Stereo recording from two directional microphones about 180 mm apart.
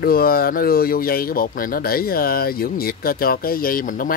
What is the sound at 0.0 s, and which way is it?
Speech, 55° left (ahead or behind).